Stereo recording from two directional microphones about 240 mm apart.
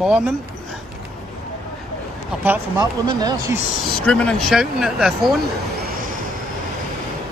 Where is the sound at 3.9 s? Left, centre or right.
Centre.